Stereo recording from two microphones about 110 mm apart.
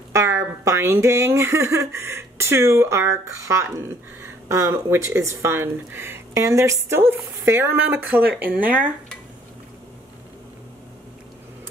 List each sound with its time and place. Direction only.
0.1 s speech: 25° right (ahead or behind)